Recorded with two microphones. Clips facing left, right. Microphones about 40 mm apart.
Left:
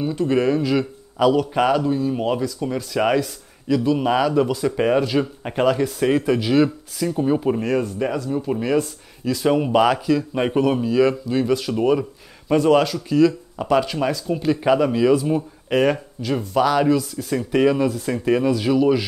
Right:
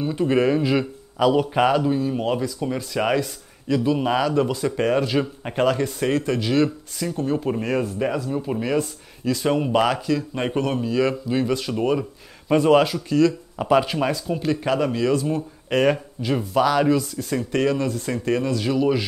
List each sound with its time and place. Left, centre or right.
0.1 s speech: centre